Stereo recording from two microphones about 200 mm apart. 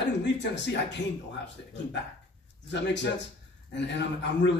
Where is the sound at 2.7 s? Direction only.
60° left (ahead or behind).